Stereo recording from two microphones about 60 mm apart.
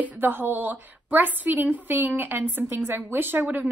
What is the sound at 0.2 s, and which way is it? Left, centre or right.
A woman's voice, right.